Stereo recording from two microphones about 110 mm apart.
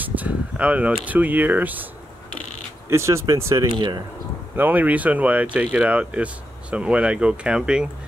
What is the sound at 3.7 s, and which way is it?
Speech, 45° right (ahead or behind).